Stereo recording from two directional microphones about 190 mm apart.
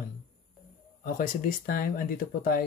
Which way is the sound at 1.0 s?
45° left (ahead or behind).